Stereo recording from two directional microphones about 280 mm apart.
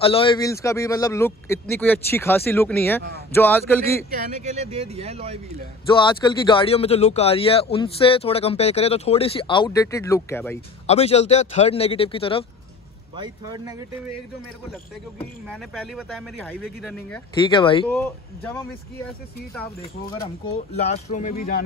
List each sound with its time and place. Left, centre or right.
0.0 s a man's voice: centre
4.4 s speech: right
6.0 s speech: centre
10.9 s speech: left
13.1 s a man's voice: centre
15.1 s speech: centre
17.5 s a man's voice: centre
17.8 s a man's voice: centre
19.8 s speech: centre